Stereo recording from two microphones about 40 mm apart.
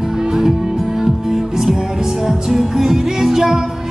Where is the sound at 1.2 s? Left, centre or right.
Centre.